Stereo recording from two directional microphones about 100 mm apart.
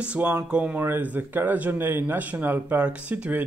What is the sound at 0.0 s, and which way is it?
Speech, 15° right (ahead or behind).